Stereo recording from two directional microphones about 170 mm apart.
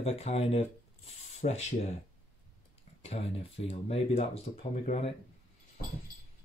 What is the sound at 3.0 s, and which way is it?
Speech, 35° left (ahead or behind).